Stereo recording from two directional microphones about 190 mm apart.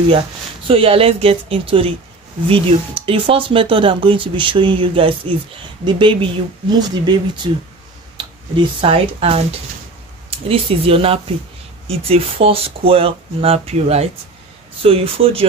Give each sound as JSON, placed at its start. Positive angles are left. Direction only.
{"t": 0.7, "sound": "speech", "side_deg": -30}